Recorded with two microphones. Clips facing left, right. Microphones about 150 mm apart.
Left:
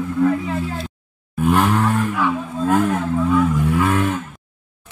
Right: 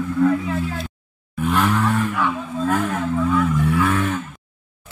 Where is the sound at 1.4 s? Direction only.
15° left (ahead or behind).